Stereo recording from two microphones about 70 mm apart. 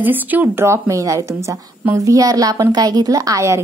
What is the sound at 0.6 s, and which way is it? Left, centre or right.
A woman's voice, right.